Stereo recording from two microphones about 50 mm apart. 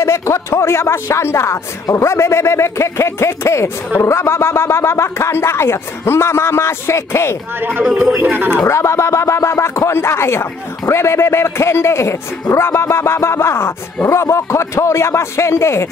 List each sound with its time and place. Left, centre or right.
0.0 s speech: left
8.2 s speech: right
8.6 s speech: left